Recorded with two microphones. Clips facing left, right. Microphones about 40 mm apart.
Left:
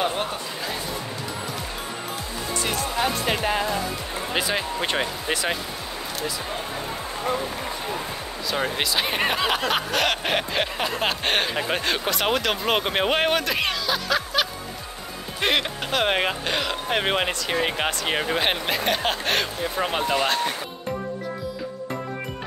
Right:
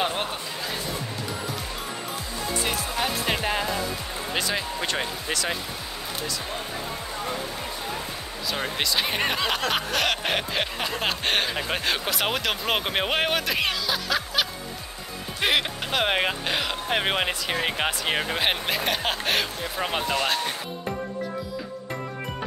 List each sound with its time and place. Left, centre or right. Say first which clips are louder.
2.6 s speech: left 4 dB; centre
4.3 s speech: left 2 dB; centre
8.5 s speech: left 2 dB; centre